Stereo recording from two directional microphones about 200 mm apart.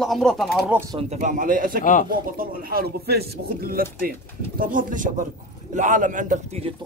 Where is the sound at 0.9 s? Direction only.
35° right (ahead or behind).